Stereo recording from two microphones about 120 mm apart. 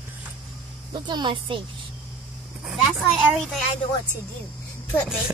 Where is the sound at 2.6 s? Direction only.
Centre (ahead or behind).